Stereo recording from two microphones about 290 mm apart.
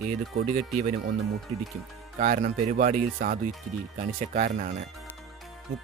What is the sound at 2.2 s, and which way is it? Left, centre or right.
Speech, right.